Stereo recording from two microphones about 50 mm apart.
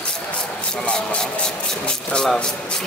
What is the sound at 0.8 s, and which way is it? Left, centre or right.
Speech, left.